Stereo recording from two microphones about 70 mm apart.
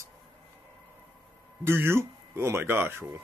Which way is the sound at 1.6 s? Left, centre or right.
Right.